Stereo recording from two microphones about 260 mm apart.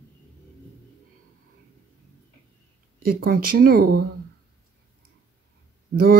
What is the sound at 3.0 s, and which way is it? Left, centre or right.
Speech, right.